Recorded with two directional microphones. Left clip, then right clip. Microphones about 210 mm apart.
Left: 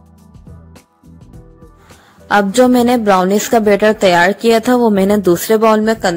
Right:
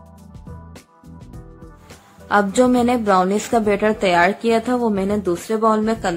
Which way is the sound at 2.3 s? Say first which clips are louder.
Left 5 dB; 25° left (ahead or behind).